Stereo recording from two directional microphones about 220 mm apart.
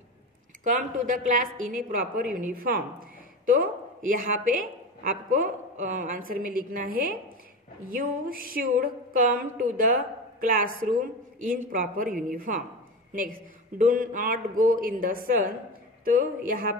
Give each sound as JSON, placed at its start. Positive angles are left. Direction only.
{"t": 0.7, "sound": "a woman's voice", "side_deg": -35}